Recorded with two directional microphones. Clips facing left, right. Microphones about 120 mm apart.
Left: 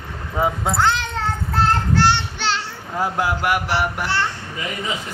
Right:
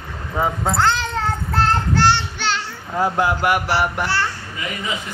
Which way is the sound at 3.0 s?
5° left (ahead or behind).